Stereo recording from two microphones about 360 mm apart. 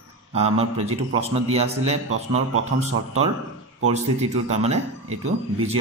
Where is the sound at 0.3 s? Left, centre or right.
Centre.